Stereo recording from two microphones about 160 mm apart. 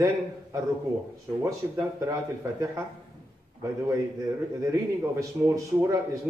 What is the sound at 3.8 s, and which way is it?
A man's voice, 20° right (ahead or behind).